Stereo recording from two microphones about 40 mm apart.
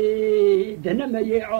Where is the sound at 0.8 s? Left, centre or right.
Centre.